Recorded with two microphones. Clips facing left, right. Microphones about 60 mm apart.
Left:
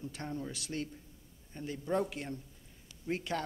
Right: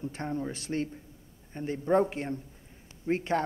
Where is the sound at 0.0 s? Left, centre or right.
Right.